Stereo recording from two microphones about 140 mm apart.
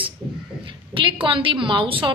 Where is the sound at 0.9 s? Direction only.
40° right (ahead or behind).